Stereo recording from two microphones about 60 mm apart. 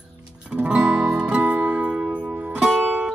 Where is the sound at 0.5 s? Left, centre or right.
Centre.